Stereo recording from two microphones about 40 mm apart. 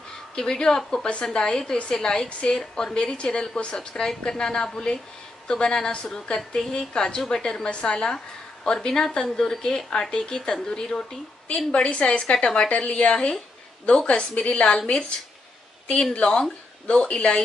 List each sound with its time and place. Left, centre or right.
0.4 s a woman's voice: centre
16.2 s a woman's voice: left